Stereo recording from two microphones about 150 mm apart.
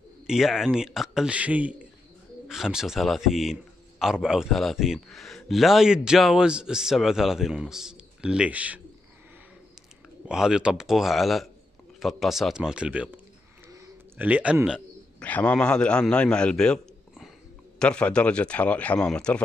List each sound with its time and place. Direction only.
0.3 s speech: centre (ahead or behind)
10.2 s speech: 5° right (ahead or behind)
13.7 s a sound: 20° right (ahead or behind)
14.2 s speech: 10° right (ahead or behind)
15.1 s a man's voice: 10° left (ahead or behind)